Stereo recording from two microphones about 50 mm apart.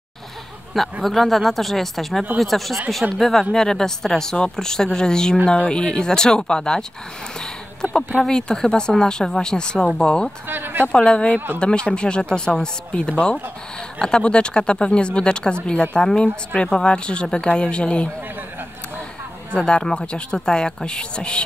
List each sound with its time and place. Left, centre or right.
1.0 s a woman's voice: centre
7.3 s a sound: centre
8.3 s a woman's voice: centre
10.5 s speech: right
10.9 s a woman's voice: centre
19.5 s speech: centre